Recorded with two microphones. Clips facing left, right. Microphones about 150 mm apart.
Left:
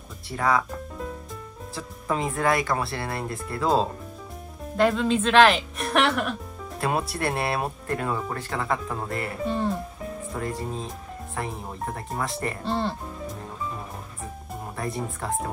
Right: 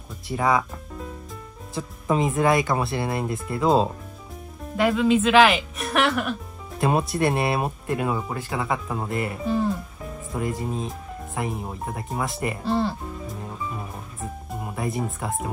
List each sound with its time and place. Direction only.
0.4 s speech: 15° right (ahead or behind)
1.8 s speech: 20° right (ahead or behind)
4.7 s speech: 5° right (ahead or behind)
6.8 s speech: 20° right (ahead or behind)
9.4 s speech: centre (ahead or behind)
10.3 s speech: 10° right (ahead or behind)
14.5 s music: 10° right (ahead or behind)
15.0 s speech: 5° right (ahead or behind)